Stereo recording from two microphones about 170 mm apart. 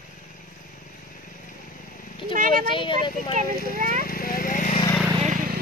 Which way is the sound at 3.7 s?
50° right (ahead or behind).